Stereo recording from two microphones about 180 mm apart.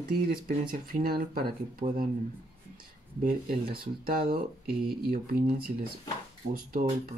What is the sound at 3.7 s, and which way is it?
Speech, 55° right (ahead or behind).